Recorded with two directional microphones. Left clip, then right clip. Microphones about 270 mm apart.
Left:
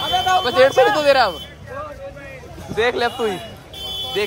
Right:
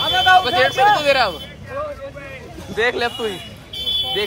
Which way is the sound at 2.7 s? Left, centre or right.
Centre.